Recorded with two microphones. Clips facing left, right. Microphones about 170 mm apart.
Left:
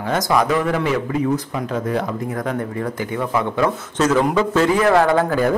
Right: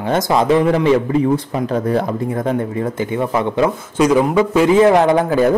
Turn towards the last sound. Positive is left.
turn(degrees=-20)  # may be behind; listen again after turning